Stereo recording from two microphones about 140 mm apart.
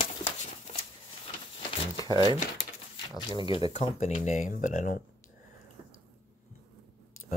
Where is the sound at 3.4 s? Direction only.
40° left (ahead or behind).